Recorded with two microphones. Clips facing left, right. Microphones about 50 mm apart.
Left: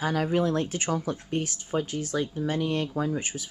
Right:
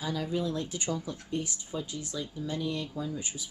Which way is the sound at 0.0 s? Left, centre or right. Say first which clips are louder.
Left 7 dB; left.